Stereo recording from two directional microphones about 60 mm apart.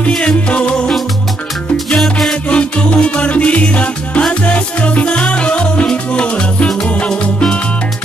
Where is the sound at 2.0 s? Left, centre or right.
Centre.